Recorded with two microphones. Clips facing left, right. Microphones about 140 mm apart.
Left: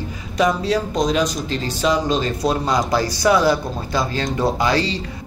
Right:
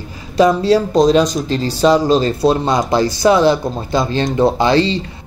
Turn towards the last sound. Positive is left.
turn(degrees=-25)  # may be behind; listen again after turning